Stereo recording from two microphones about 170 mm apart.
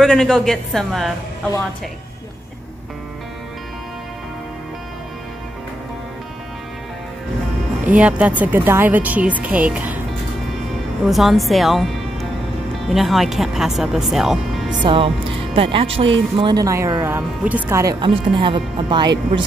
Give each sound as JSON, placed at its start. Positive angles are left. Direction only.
{"t": 0.0, "sound": "speech", "side_deg": 0}
{"t": 7.8, "sound": "speech", "side_deg": -10}
{"t": 11.1, "sound": "a woman's voice", "side_deg": 0}
{"t": 14.9, "sound": "speech", "side_deg": -30}
{"t": 18.0, "sound": "speech", "side_deg": -30}